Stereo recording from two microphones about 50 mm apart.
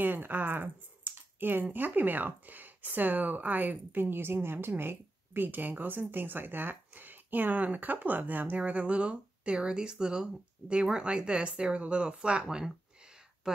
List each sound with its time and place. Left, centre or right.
0.0 s speech: right; by 12.7 s centre